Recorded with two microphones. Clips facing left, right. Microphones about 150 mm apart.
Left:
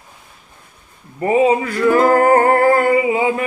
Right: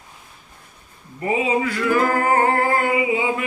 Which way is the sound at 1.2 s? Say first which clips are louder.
Left 7 dB; 40° left (ahead or behind).